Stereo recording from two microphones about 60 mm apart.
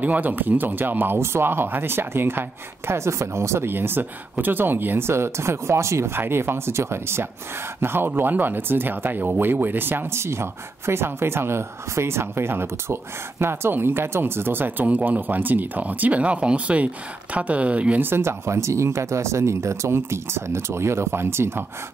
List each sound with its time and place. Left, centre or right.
0.0 s speech: right
2.9 s speech: right
18.0 s speech: right